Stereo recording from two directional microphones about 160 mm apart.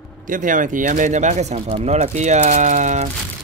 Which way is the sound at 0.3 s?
55° right (ahead or behind).